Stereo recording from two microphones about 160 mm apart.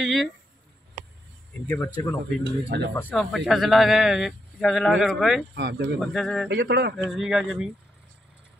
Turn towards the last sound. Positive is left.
turn(degrees=0)  # may be behind; listen again after turning